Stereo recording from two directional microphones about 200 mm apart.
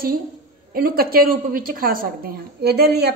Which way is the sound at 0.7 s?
45° right (ahead or behind).